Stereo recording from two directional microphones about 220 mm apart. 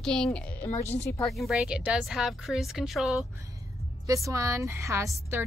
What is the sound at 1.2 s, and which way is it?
A woman's voice, centre (ahead or behind).